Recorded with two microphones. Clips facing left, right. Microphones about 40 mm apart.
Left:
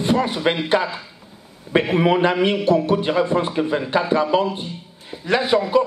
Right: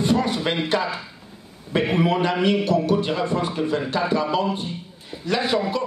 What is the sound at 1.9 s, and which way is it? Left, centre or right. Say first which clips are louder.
A man's voice: left 3 dB; centre.